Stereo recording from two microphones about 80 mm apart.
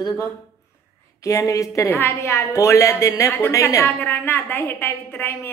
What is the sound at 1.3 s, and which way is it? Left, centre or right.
Speech, left.